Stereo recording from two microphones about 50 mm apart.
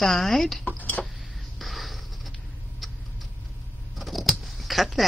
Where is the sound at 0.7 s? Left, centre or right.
Left.